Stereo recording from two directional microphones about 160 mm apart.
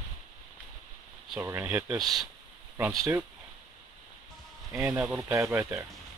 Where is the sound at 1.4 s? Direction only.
10° right (ahead or behind).